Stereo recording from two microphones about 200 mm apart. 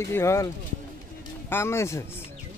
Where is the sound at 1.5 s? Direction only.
15° left (ahead or behind).